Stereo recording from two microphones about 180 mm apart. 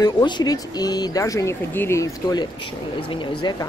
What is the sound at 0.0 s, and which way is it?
Speech, 25° left (ahead or behind).